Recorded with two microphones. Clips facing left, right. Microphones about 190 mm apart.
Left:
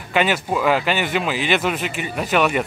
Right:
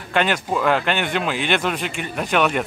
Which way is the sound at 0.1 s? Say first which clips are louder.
Left 1 dB; 5° left (ahead or behind).